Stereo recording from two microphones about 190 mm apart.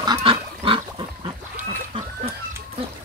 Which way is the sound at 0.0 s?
25° right (ahead or behind).